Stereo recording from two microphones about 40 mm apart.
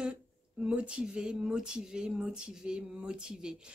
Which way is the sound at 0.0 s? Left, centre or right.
Right.